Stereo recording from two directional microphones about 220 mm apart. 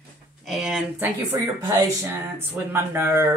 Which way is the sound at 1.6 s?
10° right (ahead or behind).